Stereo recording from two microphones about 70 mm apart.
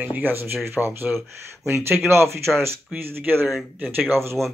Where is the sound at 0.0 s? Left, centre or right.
Right.